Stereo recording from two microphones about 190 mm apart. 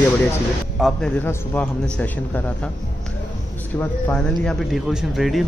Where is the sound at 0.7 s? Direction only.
Centre (ahead or behind).